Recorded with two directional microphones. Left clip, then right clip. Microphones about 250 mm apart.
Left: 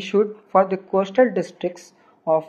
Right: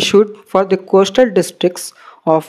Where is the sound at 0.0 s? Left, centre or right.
Right.